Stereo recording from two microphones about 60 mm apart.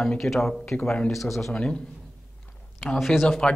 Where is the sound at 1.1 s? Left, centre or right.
Centre.